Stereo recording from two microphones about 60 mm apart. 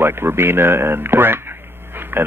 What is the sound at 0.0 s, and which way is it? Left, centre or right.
Speech, right.